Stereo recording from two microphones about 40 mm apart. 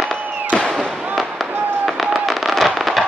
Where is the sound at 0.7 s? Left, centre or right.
Centre.